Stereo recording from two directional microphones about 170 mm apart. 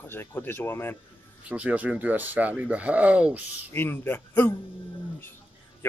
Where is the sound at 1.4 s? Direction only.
10° right (ahead or behind).